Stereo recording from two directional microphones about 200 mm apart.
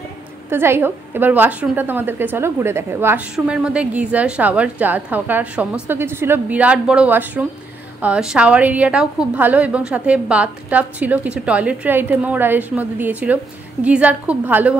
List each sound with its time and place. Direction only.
0.5 s a woman's voice: 10° right (ahead or behind)